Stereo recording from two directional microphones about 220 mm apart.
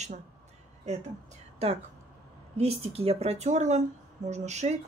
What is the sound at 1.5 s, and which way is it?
A woman's voice, 30° right (ahead or behind).